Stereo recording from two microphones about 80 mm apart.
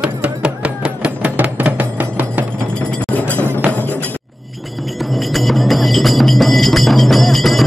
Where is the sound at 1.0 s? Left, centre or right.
Centre.